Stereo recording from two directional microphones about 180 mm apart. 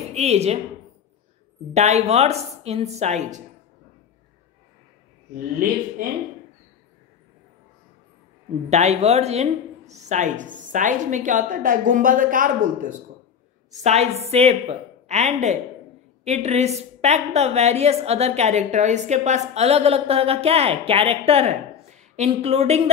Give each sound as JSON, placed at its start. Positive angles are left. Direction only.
{"t": 0.1, "sound": "a woman's voice", "side_deg": -35}
{"t": 1.7, "sound": "a woman's voice", "side_deg": -40}
{"t": 8.6, "sound": "a woman's voice", "side_deg": -40}
{"t": 13.8, "sound": "a woman's voice", "side_deg": -35}